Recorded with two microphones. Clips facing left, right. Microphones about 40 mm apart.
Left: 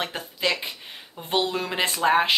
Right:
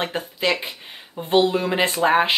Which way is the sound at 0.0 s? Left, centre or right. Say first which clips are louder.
Right 3 dB; centre.